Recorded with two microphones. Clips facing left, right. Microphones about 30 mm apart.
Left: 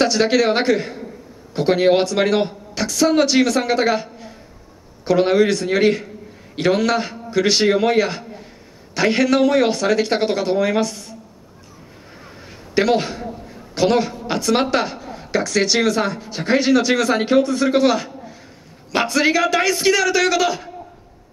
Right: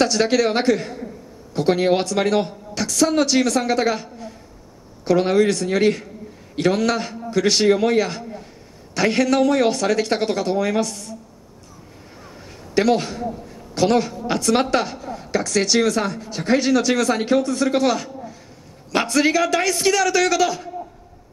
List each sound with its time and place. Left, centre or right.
0.0 s speech: centre
12.7 s speech: centre